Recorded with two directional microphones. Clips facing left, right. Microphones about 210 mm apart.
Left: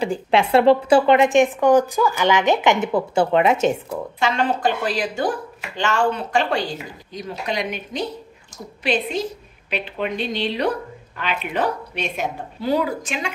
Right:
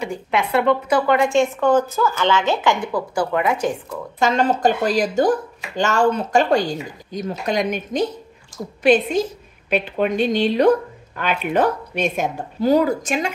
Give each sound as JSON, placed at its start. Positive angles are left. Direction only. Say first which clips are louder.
{"t": 0.0, "sound": "a woman's voice", "louder": "left 3 dB", "side_deg": 30}
{"t": 4.2, "sound": "speech", "louder": "right 4 dB", "side_deg": -40}